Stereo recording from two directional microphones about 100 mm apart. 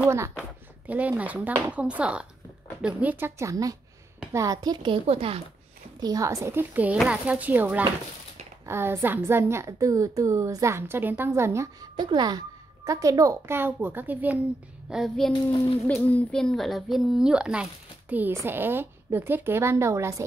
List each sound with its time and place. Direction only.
0.8 s a woman's voice: 15° right (ahead or behind); by 4.6 s 30° right (ahead or behind)
4.6 s a woman's voice: 45° right (ahead or behind)
4.9 s speech: 80° right
5.9 s a woman's voice: 40° right (ahead or behind)
11.8 s a child's voice: 45° right (ahead or behind); by 14.4 s 15° right (ahead or behind)
14.9 s a child's voice: centre (ahead or behind)
15.9 s a child's voice: 15° left (ahead or behind); by 17.6 s 10° right (ahead or behind)
18.1 s a woman's voice: 20° right (ahead or behind)